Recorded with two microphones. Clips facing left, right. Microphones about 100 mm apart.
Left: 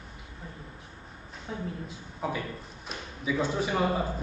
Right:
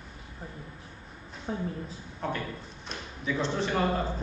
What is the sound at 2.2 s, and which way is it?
Speech, 5° left (ahead or behind).